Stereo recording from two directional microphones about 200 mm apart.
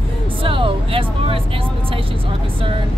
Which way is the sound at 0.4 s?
25° right (ahead or behind).